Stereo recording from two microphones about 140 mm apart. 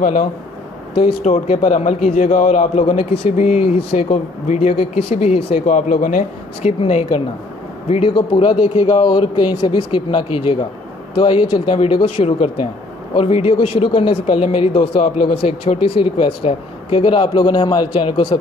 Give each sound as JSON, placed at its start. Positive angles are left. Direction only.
{"t": 1.2, "sound": "a man's voice", "side_deg": 55}
{"t": 5.8, "sound": "speech", "side_deg": 70}
{"t": 6.6, "sound": "speech", "side_deg": 45}